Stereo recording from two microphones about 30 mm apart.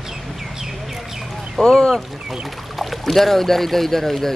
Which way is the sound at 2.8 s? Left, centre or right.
Centre.